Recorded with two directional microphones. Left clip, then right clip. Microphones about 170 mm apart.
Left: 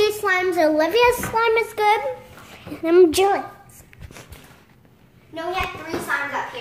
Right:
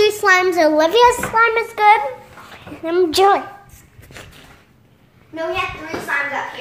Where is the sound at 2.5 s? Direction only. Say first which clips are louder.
Left 2 dB; 20° left (ahead or behind).